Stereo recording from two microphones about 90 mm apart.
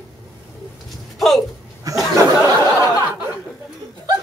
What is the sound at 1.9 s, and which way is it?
Speech, 40° right (ahead or behind).